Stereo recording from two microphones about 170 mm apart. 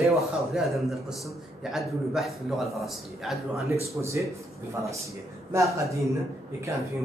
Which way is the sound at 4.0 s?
15° right (ahead or behind).